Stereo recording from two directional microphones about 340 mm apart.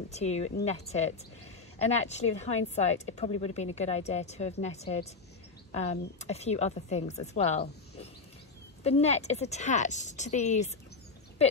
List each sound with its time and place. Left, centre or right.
0.1 s a woman's voice: centre